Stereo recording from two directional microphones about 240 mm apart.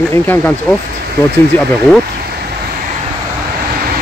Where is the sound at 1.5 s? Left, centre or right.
Centre.